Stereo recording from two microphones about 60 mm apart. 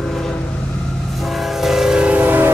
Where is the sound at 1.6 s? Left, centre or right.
Centre.